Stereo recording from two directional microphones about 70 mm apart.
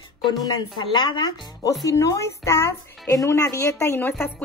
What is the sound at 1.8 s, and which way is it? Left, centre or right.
A woman's voice, left.